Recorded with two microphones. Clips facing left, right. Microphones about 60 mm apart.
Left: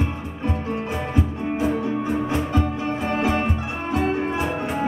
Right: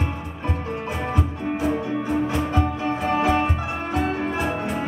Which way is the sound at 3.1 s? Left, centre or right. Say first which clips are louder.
Right 2 dB; left.